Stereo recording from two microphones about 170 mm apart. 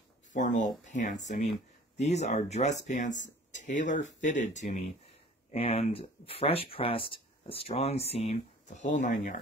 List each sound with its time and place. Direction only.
0.3 s speech: 45° left (ahead or behind)